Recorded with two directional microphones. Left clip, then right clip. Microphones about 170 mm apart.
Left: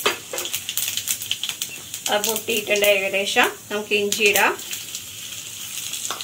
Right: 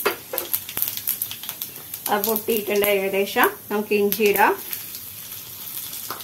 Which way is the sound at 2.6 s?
75° right (ahead or behind).